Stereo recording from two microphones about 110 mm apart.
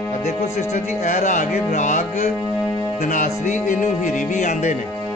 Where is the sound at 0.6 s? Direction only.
90° left.